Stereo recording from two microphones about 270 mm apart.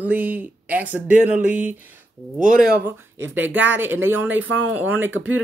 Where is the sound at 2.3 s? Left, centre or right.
Right.